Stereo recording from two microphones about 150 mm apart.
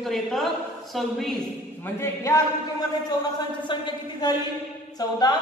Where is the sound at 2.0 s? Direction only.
20° left (ahead or behind).